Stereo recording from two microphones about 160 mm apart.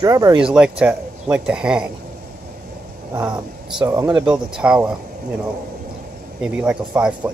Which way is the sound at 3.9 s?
20° right (ahead or behind).